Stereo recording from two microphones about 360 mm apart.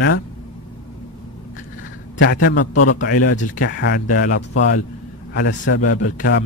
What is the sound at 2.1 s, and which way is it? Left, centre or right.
Speech, left.